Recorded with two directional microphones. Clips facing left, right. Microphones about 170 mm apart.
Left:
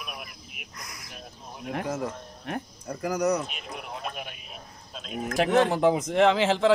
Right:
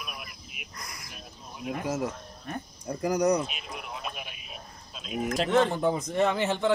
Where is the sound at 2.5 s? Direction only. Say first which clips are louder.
Left 4 dB; 80° left.